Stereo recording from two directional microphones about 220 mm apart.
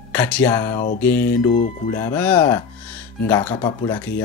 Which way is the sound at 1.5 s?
35° left (ahead or behind).